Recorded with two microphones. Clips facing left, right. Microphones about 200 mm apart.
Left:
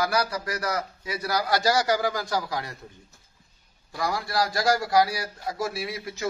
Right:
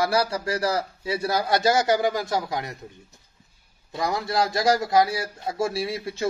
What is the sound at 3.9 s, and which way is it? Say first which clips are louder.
A man's voice: right 3 dB; 20° right (ahead or behind).